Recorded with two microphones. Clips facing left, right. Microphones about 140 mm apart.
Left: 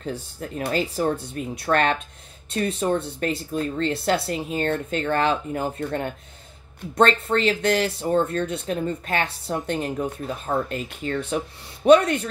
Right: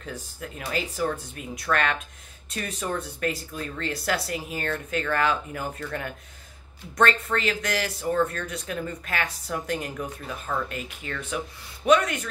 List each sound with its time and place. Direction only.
0.0 s speech: 30° left (ahead or behind)